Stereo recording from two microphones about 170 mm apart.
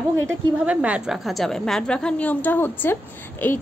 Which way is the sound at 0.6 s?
5° right (ahead or behind).